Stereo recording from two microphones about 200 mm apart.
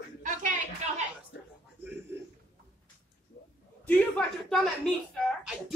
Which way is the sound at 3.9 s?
5° left (ahead or behind).